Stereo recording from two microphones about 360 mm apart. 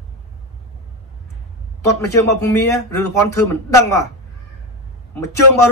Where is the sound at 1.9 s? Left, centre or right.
Centre.